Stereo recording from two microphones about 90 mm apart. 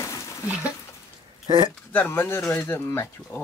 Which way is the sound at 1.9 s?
25° left (ahead or behind).